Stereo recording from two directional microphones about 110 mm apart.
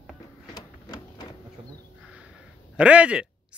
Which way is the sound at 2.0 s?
10° right (ahead or behind).